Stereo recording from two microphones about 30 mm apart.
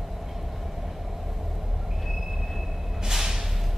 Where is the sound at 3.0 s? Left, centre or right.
Centre.